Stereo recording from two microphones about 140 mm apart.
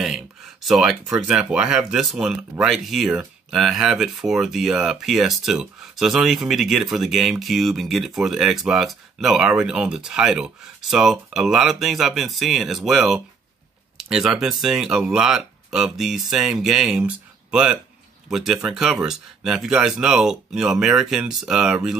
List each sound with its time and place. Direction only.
0.7 s speech: centre (ahead or behind)